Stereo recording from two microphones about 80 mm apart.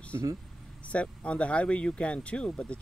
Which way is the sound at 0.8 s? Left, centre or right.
Centre.